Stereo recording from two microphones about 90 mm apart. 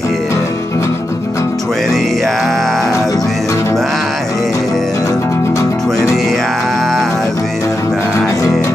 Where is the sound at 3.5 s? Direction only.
35° left (ahead or behind).